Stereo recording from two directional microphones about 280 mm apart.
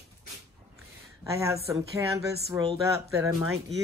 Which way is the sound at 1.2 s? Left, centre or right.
Centre.